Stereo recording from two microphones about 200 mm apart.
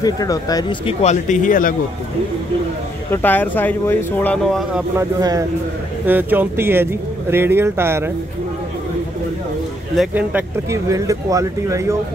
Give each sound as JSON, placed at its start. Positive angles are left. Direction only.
{"t": 0.0, "sound": "speech", "side_deg": 20}
{"t": 3.1, "sound": "speech", "side_deg": 10}
{"t": 4.9, "sound": "speech", "side_deg": -15}
{"t": 9.9, "sound": "speech", "side_deg": -10}